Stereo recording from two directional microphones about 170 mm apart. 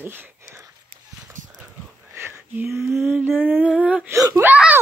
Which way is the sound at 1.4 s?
50° right (ahead or behind).